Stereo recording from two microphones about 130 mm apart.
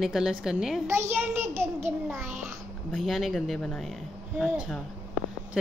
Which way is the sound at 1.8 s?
15° right (ahead or behind).